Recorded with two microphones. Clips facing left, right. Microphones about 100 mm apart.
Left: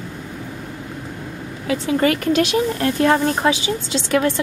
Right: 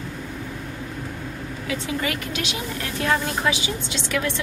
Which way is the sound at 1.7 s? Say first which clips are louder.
Left 9 dB; 45° left (ahead or behind).